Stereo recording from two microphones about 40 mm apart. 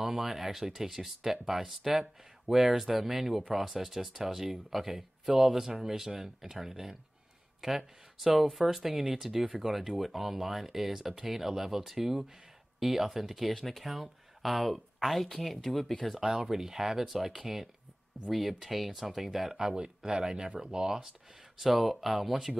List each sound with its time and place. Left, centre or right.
0.0 s speech: centre
16.2 s speech: centre
19.7 s speech: centre
21.5 s speech: centre